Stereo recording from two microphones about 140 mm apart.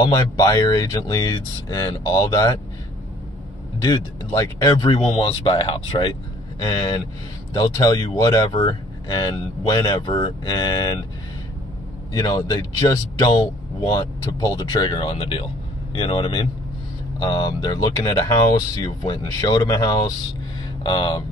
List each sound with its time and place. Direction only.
0.0 s speech: 25° left (ahead or behind)
3.8 s speech: 25° left (ahead or behind)
4.9 s speech: 40° left (ahead or behind)
12.1 s speech: 25° left (ahead or behind)